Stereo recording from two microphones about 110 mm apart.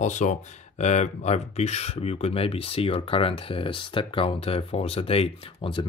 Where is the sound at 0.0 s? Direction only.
90° left.